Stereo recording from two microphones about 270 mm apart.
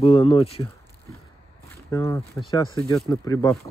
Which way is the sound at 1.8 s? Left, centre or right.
Centre.